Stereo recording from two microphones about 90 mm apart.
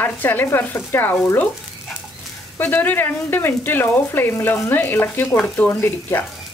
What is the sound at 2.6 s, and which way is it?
Speech, 20° left (ahead or behind).